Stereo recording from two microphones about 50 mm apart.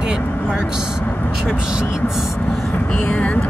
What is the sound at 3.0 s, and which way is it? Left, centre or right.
Speech, left.